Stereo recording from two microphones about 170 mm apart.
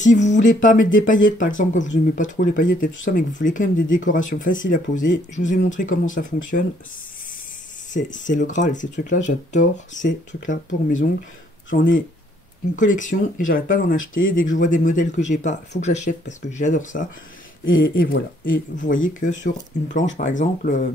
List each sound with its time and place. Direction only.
0.0 s speech: 45° left (ahead or behind)
7.9 s speech: 50° left (ahead or behind)
12.7 s speech: 50° left (ahead or behind)